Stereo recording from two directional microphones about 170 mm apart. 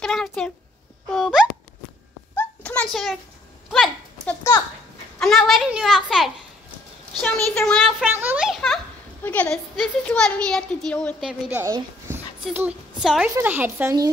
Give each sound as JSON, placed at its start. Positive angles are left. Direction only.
{"t": 0.0, "sound": "a sound", "side_deg": 0}
{"t": 5.2, "sound": "a child's voice", "side_deg": 0}
{"t": 7.5, "sound": "a child's voice", "side_deg": 5}
{"t": 8.1, "sound": "a child's voice", "side_deg": -10}
{"t": 11.2, "sound": "a child's voice", "side_deg": -5}
{"t": 11.6, "sound": "speech", "side_deg": -20}
{"t": 12.4, "sound": "a woman's voice", "side_deg": -5}